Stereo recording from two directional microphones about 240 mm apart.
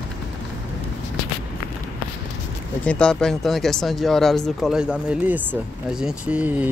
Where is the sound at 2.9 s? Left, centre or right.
Centre.